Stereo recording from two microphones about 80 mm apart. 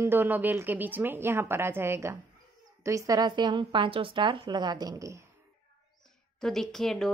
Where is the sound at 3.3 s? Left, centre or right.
Right.